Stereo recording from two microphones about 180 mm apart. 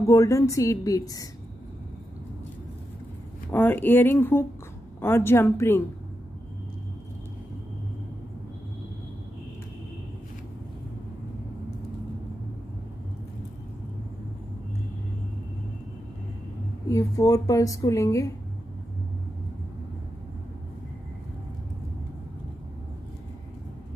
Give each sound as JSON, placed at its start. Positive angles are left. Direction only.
{"t": 0.0, "sound": "a woman's voice", "side_deg": 15}
{"t": 3.5, "sound": "a woman's voice", "side_deg": 10}
{"t": 16.9, "sound": "a woman's voice", "side_deg": 20}